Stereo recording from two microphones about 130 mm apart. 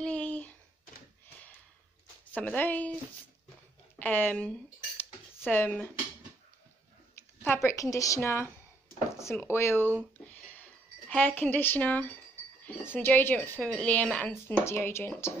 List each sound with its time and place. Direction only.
0.0 s a sound: 10° left (ahead or behind)
2.3 s speech: 15° left (ahead or behind)
4.0 s speech: 15° left (ahead or behind)
7.4 s speech: 20° left (ahead or behind)
10.3 s a sound: 15° left (ahead or behind)
12.9 s speech: 15° left (ahead or behind)